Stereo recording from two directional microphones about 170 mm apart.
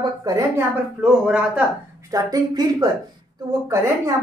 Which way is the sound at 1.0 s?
5° right (ahead or behind).